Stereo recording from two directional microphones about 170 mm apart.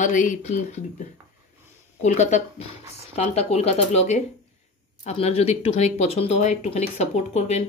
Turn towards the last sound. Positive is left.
turn(degrees=40)  # may be behind; listen again after turning